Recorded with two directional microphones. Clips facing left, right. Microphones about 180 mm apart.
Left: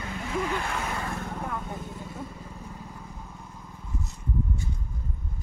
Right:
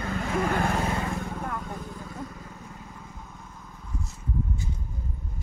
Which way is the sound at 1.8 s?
25° left (ahead or behind).